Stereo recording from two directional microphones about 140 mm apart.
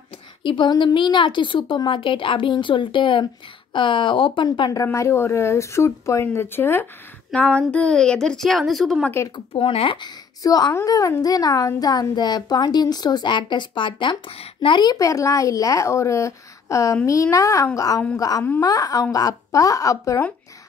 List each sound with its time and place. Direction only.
0.4 s a woman's voice: 35° left (ahead or behind); by 9.1 s centre (ahead or behind)
9.5 s a woman's voice: 40° left (ahead or behind); by 20.2 s 25° left (ahead or behind)